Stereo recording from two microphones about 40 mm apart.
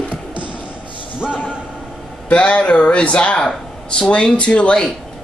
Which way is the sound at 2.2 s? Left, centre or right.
Left.